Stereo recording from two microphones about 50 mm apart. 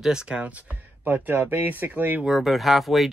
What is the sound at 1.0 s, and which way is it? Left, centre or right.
Speech, right.